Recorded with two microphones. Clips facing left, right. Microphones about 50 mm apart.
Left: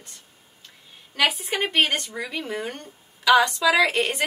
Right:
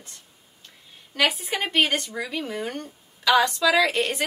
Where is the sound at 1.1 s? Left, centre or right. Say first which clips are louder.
Even; centre.